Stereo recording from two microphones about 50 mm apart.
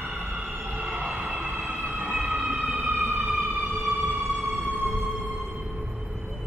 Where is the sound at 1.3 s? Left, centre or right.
Right.